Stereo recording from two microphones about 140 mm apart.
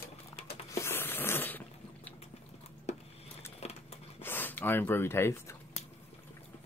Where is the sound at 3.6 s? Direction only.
50° left (ahead or behind).